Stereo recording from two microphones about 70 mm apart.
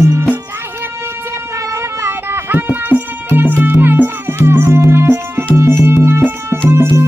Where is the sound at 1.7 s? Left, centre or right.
Right.